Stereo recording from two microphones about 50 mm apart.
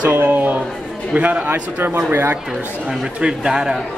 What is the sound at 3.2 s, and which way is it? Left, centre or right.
Speech, centre.